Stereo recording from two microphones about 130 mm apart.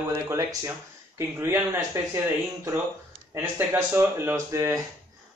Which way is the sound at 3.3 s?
20° right (ahead or behind).